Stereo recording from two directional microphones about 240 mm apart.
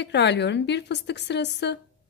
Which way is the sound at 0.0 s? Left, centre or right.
Left.